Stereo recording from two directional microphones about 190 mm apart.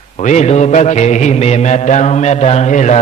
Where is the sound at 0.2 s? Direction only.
35° left (ahead or behind).